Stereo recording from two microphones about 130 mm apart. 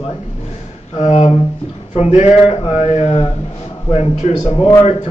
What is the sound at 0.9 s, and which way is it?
Speech, 55° left (ahead or behind).